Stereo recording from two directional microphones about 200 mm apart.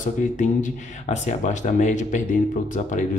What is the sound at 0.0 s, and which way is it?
Speech, 40° left (ahead or behind).